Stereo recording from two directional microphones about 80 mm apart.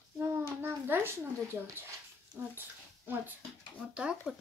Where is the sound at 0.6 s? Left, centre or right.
Right.